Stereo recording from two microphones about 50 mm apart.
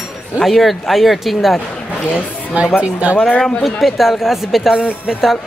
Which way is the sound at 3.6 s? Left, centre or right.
Centre.